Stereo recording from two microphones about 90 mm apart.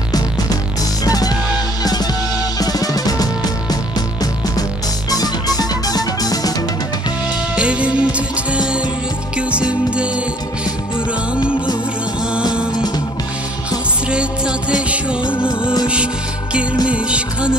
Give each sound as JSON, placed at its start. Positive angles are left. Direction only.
{"t": 1.0, "sound": "music", "side_deg": 45}
{"t": 2.6, "sound": "drum", "side_deg": 45}
{"t": 5.1, "sound": "music", "side_deg": 45}
{"t": 7.5, "sound": "music", "side_deg": -10}
{"t": 9.5, "sound": "music", "side_deg": -15}
{"t": 14.1, "sound": "music", "side_deg": -10}
{"t": 16.8, "sound": "music", "side_deg": -10}